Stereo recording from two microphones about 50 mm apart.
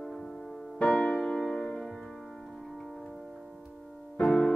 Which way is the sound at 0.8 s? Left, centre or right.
Left.